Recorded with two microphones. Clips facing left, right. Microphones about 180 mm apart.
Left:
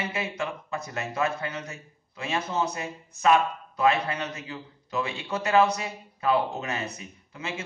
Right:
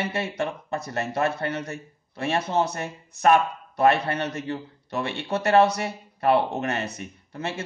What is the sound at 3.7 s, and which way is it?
Speech, 70° right (ahead or behind).